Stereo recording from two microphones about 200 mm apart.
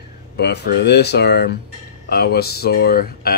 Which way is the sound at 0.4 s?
55° left (ahead or behind).